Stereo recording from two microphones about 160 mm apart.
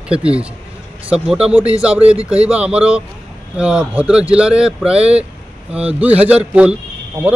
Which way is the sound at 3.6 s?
5° right (ahead or behind).